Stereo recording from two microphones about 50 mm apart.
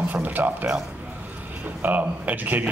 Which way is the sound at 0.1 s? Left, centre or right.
Right.